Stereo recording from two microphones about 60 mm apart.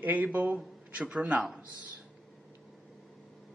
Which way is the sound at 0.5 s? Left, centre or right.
Centre.